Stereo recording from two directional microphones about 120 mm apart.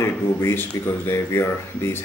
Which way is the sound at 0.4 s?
20° left (ahead or behind).